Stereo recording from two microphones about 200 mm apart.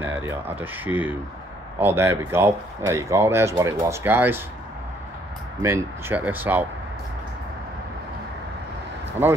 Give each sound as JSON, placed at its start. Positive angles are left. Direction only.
{"t": 0.0, "sound": "speech", "side_deg": -10}
{"t": 5.6, "sound": "speech", "side_deg": -15}